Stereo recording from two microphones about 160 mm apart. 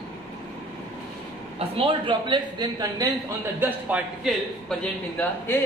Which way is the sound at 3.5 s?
10° right (ahead or behind).